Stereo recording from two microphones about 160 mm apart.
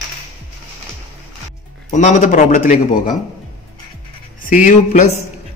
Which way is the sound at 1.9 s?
50° left (ahead or behind).